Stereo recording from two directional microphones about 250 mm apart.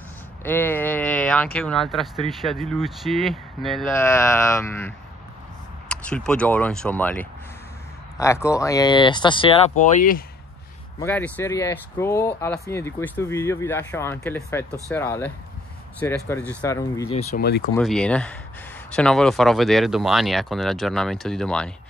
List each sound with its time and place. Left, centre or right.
0.4 s speech: centre
3.9 s speech: centre; by 10.2 s left
11.0 s speech: centre
17.1 s speech: left
17.4 s speech: left
17.7 s speech: centre